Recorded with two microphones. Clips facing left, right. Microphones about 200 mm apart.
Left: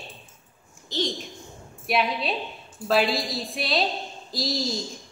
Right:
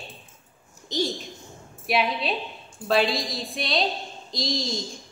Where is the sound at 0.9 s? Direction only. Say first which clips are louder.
Right 2 dB; 15° right (ahead or behind).